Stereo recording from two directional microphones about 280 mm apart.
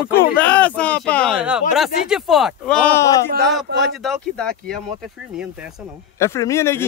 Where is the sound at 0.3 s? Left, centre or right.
Centre.